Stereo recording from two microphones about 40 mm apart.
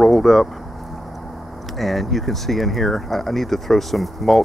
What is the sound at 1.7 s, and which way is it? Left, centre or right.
Speech, centre.